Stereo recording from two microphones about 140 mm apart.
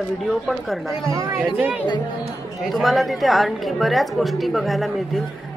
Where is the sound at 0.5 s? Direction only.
Centre (ahead or behind).